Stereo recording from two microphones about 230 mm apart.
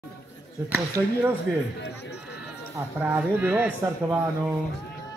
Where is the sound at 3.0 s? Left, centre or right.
Centre.